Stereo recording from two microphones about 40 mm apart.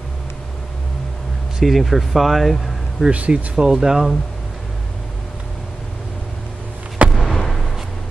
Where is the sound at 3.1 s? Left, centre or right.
Right.